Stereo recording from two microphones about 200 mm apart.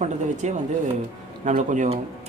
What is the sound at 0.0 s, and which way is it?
Speech, 35° right (ahead or behind).